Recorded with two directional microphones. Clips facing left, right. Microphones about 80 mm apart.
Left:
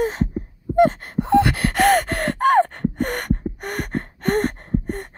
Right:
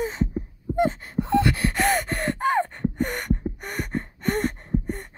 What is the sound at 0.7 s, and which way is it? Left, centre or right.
Gasp, left.